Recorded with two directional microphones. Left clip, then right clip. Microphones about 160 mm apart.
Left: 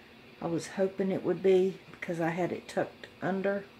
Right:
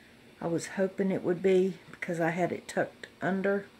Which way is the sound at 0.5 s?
70° right (ahead or behind).